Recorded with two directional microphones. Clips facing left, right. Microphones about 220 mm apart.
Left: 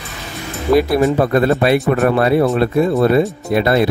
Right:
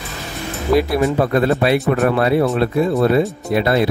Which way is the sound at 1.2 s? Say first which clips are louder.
Left 2 dB; 45° left (ahead or behind).